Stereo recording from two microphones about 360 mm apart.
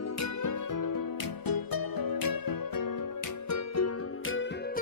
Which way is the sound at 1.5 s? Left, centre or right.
Left.